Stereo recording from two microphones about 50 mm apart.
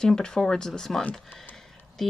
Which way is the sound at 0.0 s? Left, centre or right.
Centre.